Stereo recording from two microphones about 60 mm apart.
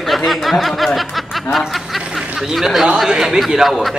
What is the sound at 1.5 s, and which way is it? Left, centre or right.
Speech, centre.